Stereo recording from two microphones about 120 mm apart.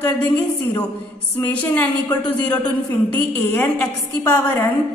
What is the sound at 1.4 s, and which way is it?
A woman's voice, 10° left (ahead or behind).